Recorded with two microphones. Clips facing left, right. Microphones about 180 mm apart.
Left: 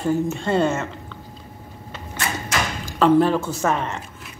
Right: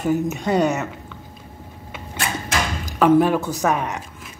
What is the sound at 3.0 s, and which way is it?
Speech, 10° right (ahead or behind).